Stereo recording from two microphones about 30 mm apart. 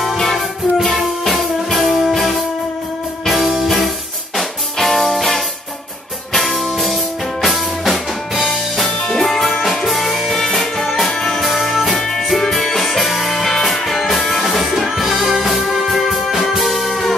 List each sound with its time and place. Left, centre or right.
0.3 s music: centre
11.4 s music: centre
13.3 s music: centre